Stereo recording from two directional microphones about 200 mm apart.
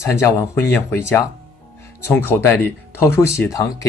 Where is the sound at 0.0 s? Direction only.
15° left (ahead or behind).